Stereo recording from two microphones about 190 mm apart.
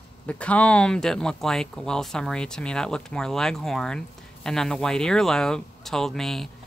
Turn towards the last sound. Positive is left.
turn(degrees=0)  # may be behind; listen again after turning